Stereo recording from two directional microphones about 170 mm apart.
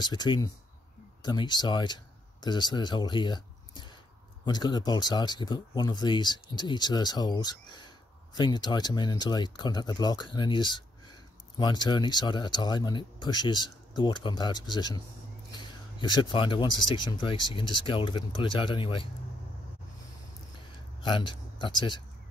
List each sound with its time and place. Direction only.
0.0 s speech: 25° left (ahead or behind)
21.0 s speech: 30° left (ahead or behind)